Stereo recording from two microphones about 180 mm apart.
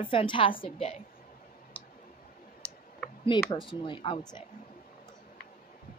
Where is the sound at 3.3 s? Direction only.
25° left (ahead or behind).